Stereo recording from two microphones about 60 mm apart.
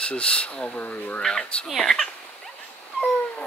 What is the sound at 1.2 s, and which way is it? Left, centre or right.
Speech, centre.